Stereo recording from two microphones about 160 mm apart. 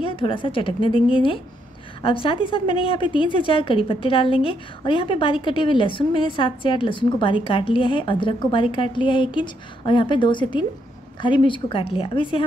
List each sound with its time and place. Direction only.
0.0 s a woman's voice: 35° left (ahead or behind)